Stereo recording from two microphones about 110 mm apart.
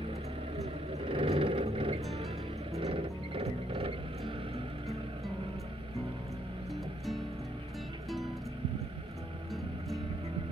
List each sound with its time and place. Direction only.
0.6 s vehicle: 60° right (ahead or behind)
2.8 s music: 60° right (ahead or behind)